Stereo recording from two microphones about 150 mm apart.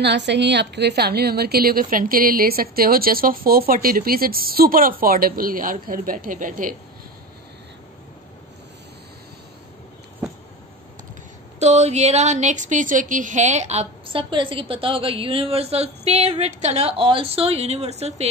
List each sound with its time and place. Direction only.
0.7 s a woman's voice: 90° right; by 6.7 s 60° right (ahead or behind)
11.6 s a woman's voice: 50° right (ahead or behind)
14.3 s a woman's voice: 35° right (ahead or behind)